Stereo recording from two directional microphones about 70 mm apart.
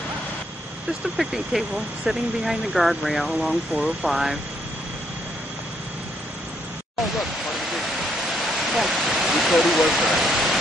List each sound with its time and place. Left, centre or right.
1.1 s speech: centre
7.2 s pink noise: centre
8.4 s a sound: centre